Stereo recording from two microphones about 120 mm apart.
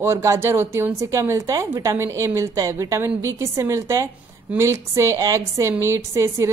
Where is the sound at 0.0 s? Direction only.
20° right (ahead or behind).